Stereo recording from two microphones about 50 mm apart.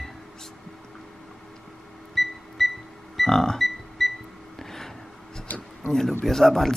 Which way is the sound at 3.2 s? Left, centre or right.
Centre.